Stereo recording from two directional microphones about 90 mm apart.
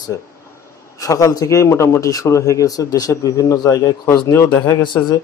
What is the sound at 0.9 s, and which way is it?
A man's voice, 40° left (ahead or behind).